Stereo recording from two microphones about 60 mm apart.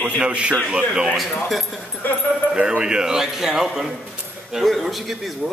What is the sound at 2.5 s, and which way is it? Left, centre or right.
A man's voice, centre.